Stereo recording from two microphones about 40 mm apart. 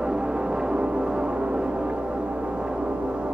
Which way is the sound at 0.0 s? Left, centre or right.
Right.